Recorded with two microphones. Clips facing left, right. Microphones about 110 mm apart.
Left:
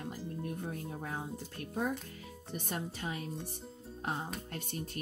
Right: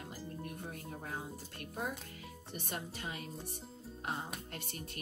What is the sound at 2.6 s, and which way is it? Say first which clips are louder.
Speech: left 4 dB; 40° left (ahead or behind).